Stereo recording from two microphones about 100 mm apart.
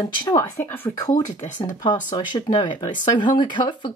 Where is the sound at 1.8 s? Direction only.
45° left (ahead or behind).